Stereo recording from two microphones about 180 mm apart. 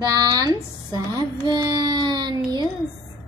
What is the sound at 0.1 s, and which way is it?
Speech, 20° right (ahead or behind).